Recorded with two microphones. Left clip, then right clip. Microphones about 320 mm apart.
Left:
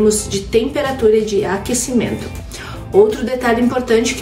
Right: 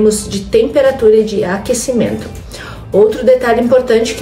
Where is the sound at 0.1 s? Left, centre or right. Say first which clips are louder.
Right 2 dB; centre.